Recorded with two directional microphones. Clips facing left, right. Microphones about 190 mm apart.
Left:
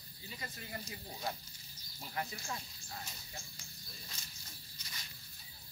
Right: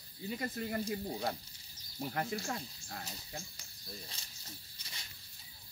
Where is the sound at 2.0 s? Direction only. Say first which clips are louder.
Right 6 dB; 55° right (ahead or behind).